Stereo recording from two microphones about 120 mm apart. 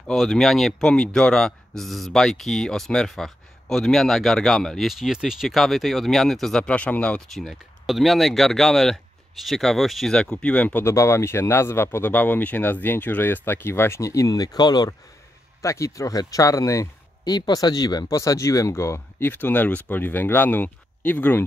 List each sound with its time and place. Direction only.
0.0 s speech: centre (ahead or behind)
10.9 s speech: 20° left (ahead or behind)